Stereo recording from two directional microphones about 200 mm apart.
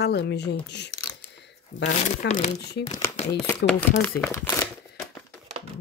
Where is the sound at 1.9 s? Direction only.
35° left (ahead or behind).